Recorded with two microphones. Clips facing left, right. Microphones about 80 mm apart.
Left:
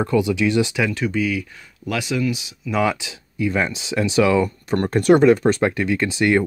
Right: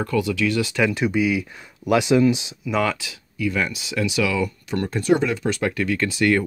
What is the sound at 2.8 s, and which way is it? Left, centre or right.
Speech, centre.